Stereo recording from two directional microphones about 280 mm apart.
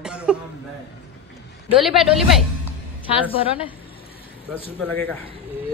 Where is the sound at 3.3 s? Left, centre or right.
Centre.